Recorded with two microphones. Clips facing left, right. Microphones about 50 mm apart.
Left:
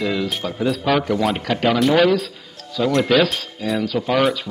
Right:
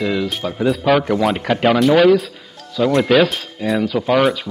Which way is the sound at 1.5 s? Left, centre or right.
Right.